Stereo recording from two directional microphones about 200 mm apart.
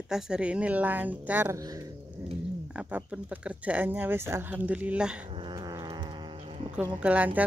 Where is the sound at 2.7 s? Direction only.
5° right (ahead or behind).